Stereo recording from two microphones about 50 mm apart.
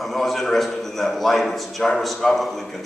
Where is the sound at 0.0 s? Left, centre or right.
Centre.